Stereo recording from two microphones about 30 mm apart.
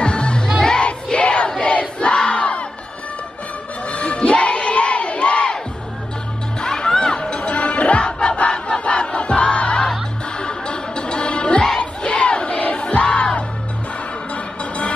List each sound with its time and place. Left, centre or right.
0.0 s music: left
1.1 s a sound: left
1.6 s crowd: left
3.8 s crowd: left
6.6 s music: left
8.0 s crowd: left
10.4 s music: left
11.8 s crowd: left
14.3 s music: left